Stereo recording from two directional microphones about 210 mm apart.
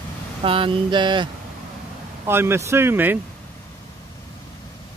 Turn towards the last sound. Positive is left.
turn(degrees=-10)  # may be behind; listen again after turning